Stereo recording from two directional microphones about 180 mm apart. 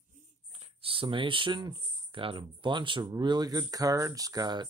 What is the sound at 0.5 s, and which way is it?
Speech, 30° right (ahead or behind).